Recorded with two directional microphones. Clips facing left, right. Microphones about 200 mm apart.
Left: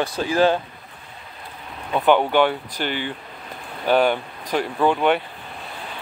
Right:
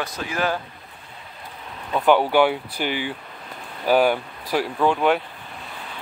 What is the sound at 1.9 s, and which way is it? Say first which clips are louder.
Speech: even; centre (ahead or behind).